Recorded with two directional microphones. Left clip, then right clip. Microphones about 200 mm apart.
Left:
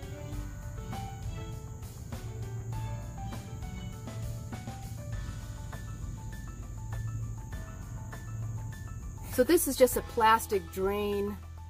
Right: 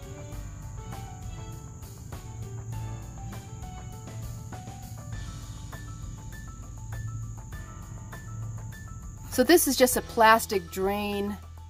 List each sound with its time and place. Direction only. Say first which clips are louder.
9.3 s a woman's voice: right 5 dB; 30° right (ahead or behind)